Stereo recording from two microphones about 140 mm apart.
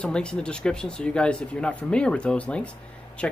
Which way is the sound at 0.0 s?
5° left (ahead or behind).